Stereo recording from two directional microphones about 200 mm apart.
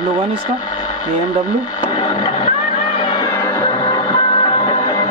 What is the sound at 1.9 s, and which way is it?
Music, 20° left (ahead or behind).